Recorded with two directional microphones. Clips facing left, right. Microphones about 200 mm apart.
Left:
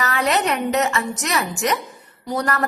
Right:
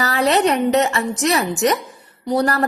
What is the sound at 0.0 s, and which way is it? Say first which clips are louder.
A woman's voice: right 4 dB; 35° right (ahead or behind).